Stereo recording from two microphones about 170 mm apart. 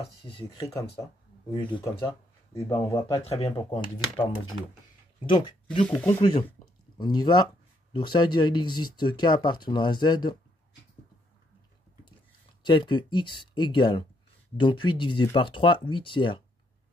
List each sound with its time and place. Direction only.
0.6 s speech: 20° left (ahead or behind)
3.3 s speech: 35° left (ahead or behind)
5.2 s speech: 30° left (ahead or behind)
5.9 s speech: 10° left (ahead or behind)
7.0 s speech: 25° left (ahead or behind)
12.6 s speech: 25° left (ahead or behind)